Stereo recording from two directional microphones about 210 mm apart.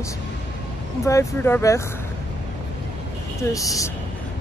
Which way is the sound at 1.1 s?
10° left (ahead or behind).